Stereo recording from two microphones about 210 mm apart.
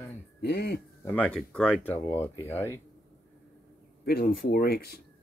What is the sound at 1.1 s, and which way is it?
Speech, 5° left (ahead or behind).